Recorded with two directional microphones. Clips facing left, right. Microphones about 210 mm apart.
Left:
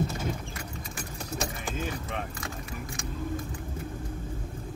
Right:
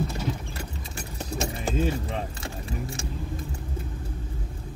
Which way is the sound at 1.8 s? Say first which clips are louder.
Right 7 dB; 30° right (ahead or behind).